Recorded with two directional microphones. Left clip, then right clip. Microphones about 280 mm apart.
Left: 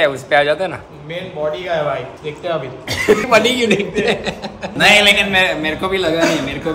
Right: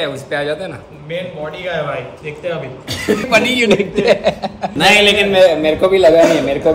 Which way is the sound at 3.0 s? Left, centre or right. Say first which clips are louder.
Left 2 dB; centre.